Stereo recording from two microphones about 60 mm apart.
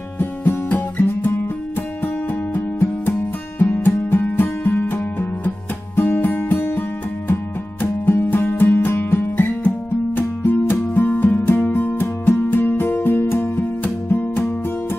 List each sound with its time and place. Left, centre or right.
0.2 s music: left
2.5 s music: left
7.8 s music: left